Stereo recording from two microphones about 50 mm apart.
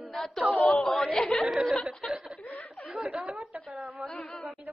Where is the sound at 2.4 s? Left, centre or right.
Left.